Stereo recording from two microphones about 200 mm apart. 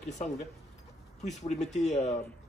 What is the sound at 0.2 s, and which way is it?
Speech, 35° left (ahead or behind).